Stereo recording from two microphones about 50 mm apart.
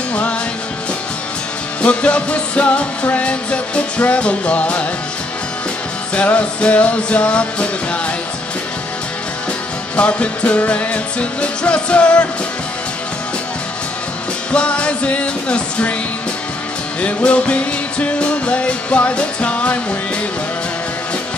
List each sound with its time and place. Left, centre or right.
1.8 s music: left
6.1 s music: left
9.9 s music: left
14.5 s music: left
17.0 s music: left